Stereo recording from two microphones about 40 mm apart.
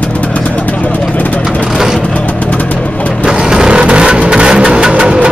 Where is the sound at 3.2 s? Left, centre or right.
Centre.